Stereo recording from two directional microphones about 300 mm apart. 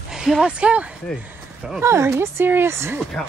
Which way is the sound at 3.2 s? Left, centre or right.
Centre.